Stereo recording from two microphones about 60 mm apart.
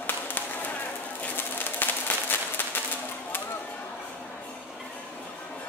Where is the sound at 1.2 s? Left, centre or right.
Left.